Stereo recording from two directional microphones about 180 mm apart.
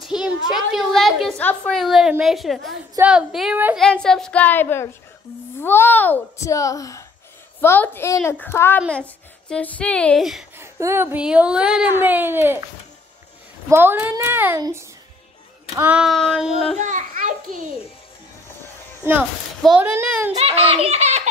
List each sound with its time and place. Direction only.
0.0 s a child's voice: centre (ahead or behind)
10.6 s speech: 15° right (ahead or behind)
13.7 s a woman's voice: 10° right (ahead or behind)
16.7 s a child's voice: 45° right (ahead or behind)
19.6 s speech: 5° right (ahead or behind)
20.3 s speech: 35° right (ahead or behind)